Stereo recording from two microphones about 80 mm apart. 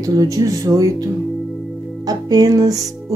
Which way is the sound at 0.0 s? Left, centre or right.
Right.